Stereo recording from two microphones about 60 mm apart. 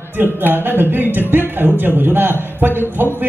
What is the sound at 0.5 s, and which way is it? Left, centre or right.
A man's voice, right.